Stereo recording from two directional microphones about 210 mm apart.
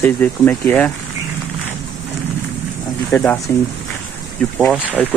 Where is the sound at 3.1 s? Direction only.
10° left (ahead or behind).